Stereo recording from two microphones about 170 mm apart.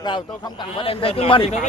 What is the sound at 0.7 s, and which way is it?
Speech, 35° left (ahead or behind).